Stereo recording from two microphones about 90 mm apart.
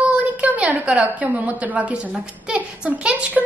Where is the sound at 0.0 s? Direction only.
15° right (ahead or behind).